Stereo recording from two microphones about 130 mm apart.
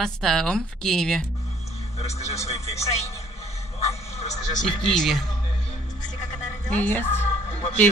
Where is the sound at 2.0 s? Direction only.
55° left (ahead or behind).